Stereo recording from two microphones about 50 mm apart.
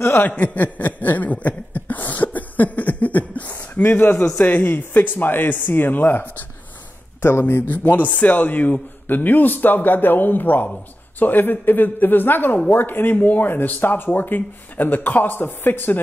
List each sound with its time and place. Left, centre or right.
0.3 s a sound: left
3.8 s speech: left
7.2 s speech: left